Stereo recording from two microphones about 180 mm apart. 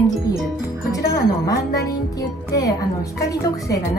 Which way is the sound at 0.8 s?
20° left (ahead or behind).